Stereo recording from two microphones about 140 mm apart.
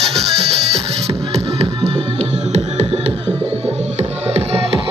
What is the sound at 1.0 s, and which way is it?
Music, 50° right (ahead or behind).